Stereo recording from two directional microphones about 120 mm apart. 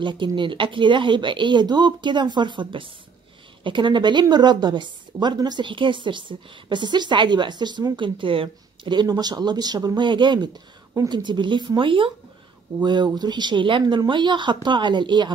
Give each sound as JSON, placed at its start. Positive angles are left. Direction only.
{"t": 0.0, "sound": "a woman's voice", "side_deg": -40}